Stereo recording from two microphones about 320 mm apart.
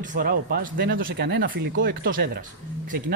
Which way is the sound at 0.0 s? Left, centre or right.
Right.